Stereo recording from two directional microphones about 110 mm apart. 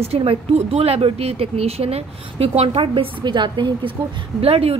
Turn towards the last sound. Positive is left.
turn(degrees=-60)  # may be behind; listen again after turning